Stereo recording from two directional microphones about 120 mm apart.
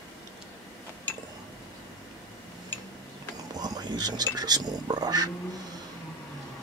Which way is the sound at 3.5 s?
35° right (ahead or behind).